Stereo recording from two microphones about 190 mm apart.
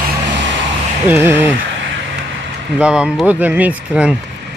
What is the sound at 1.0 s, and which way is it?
Speech, 10° right (ahead or behind).